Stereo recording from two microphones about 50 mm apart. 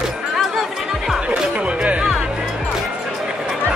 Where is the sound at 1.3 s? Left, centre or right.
Right.